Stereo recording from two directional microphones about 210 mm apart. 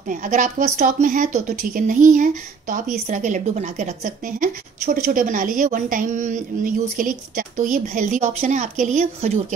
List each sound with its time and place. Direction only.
0.1 s speech: 40° right (ahead or behind)